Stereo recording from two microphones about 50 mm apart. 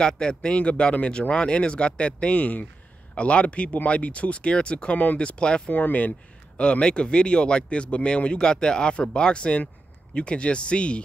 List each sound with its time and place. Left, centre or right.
0.0 s speech: centre
5.7 s speech: left